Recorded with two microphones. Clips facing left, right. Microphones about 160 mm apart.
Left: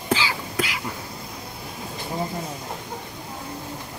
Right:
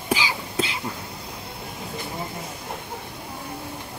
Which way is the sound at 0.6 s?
25° right (ahead or behind).